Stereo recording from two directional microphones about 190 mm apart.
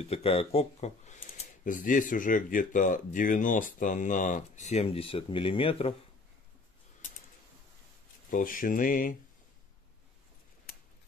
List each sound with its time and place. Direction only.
0.0 s speech: 30° left (ahead or behind)
8.3 s speech: 45° left (ahead or behind)